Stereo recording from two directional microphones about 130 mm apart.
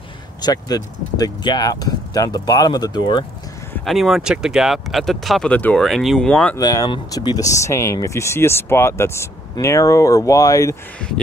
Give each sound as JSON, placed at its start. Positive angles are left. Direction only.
{"t": 0.4, "sound": "speech", "side_deg": 30}
{"t": 3.8, "sound": "speech", "side_deg": 0}
{"t": 6.5, "sound": "speech", "side_deg": 30}